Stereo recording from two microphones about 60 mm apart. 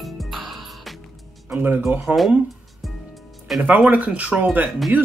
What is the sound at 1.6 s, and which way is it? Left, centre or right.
Speech, right.